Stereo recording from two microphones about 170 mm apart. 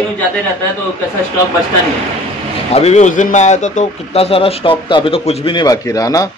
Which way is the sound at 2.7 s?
40° left (ahead or behind).